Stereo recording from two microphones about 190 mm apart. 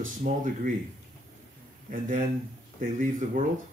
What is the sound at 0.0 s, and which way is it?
Speech, 40° right (ahead or behind).